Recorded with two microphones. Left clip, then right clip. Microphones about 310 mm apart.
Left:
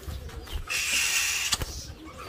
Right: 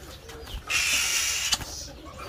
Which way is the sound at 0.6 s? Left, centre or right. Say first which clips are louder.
Right 2 dB; centre.